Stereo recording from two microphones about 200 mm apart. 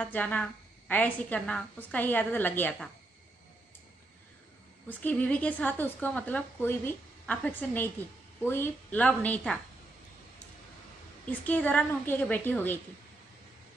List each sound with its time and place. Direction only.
0.0 s a woman's voice: 10° left (ahead or behind)
4.8 s a woman's voice: 10° left (ahead or behind)
11.4 s a woman's voice: 10° left (ahead or behind)